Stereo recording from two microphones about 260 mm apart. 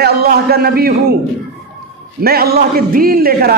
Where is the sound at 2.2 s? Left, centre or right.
Right.